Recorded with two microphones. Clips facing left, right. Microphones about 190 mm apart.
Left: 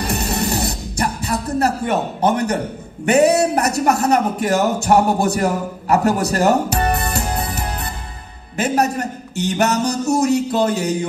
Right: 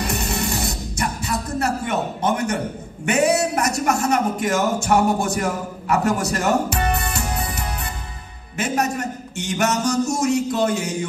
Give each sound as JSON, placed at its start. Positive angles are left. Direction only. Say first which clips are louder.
{"t": 0.0, "sound": "music", "louder": "left 3 dB", "side_deg": 35}
{"t": 3.1, "sound": "a man's voice", "louder": "left 5 dB", "side_deg": 35}